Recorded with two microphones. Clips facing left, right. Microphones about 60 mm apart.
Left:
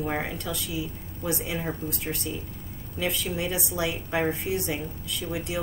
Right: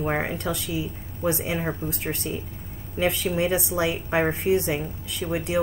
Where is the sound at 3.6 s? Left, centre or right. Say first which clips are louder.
Right 4 dB; right.